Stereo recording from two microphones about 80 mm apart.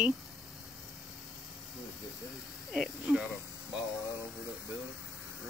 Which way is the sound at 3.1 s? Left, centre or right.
Centre.